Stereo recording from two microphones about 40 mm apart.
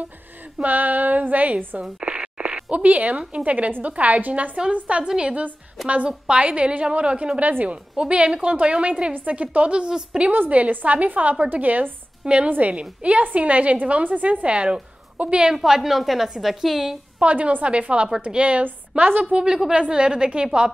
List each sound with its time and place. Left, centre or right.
0.6 s a woman's voice: right
1.8 s a sound: right
2.7 s a woman's voice: right
6.4 s a woman's voice: right
10.5 s a woman's voice: right
15.5 s a woman's voice: centre
17.2 s a woman's voice: right
18.6 s a woman's voice: right
19.3 s a woman's voice: centre